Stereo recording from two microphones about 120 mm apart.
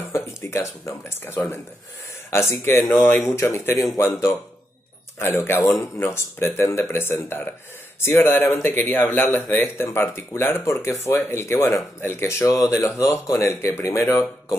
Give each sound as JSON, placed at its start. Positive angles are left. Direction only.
{"t": 0.1, "sound": "speech", "side_deg": 25}
{"t": 5.2, "sound": "speech", "side_deg": 20}